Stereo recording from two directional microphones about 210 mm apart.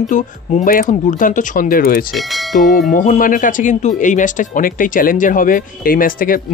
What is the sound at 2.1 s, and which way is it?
Speech, centre (ahead or behind).